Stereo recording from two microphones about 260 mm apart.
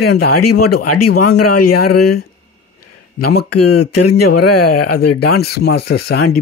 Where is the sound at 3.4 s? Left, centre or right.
Left.